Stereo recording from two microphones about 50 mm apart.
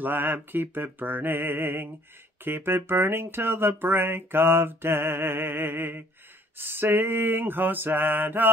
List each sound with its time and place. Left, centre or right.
0.0 s speech: right